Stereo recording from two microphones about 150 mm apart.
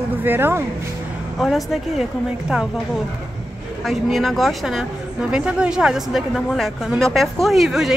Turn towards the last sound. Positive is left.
turn(degrees=0)  # may be behind; listen again after turning